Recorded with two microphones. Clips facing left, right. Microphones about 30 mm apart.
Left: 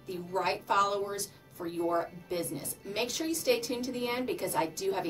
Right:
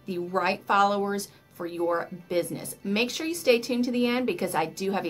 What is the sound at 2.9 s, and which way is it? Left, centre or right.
Speech, right.